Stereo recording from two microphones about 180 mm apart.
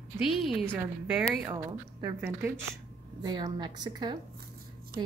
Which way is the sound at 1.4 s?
20° right (ahead or behind).